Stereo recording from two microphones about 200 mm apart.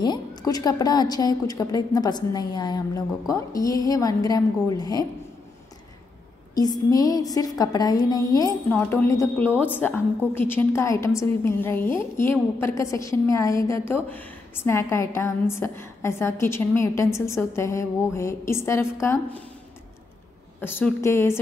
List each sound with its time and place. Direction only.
0.0 s a woman's voice: 20° left (ahead or behind)
6.5 s a woman's voice: 20° left (ahead or behind)
20.6 s a woman's voice: 10° left (ahead or behind)